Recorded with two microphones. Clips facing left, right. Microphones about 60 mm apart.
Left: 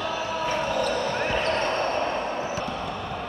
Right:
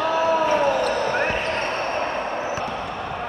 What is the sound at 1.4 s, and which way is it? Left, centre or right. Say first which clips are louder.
Basketball bounce: even; right.